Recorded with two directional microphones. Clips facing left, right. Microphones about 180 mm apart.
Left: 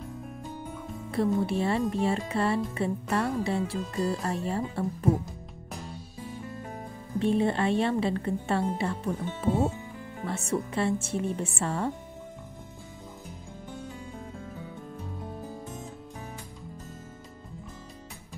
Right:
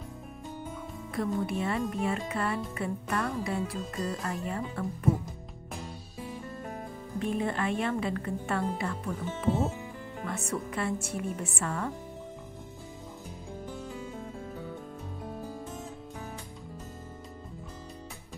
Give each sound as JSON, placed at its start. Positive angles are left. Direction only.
{"t": 1.4, "sound": "music", "side_deg": 30}
{"t": 7.2, "sound": "speech", "side_deg": 30}